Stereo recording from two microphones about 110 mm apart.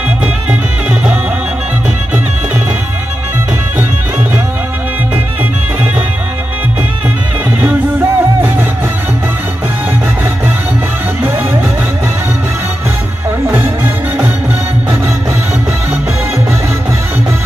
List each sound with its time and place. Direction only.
7.6 s music: 20° right (ahead or behind)